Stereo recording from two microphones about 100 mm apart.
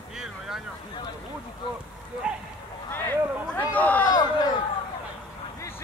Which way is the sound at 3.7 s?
15° left (ahead or behind).